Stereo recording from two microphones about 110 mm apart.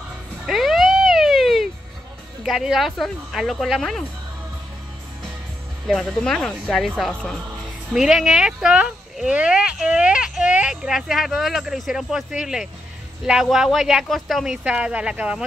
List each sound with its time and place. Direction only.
0.5 s a sound: centre (ahead or behind)
2.4 s speech: centre (ahead or behind)
5.9 s speech: 5° left (ahead or behind)